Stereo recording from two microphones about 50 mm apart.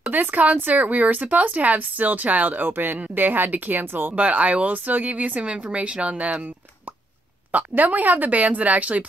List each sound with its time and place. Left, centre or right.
0.1 s speech: right
4.1 s speech: right
7.5 s speech: right